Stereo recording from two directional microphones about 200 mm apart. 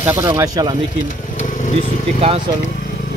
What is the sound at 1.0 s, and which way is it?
Vehicle, 40° left (ahead or behind).